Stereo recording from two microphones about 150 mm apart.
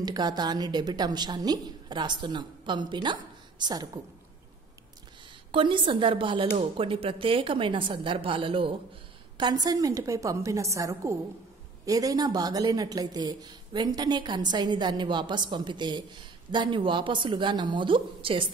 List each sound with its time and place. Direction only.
0.0 s speech: 25° right (ahead or behind)
5.5 s speech: 35° right (ahead or behind)